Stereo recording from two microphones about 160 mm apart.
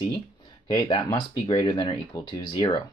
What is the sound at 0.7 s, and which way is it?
Speech, 30° left (ahead or behind).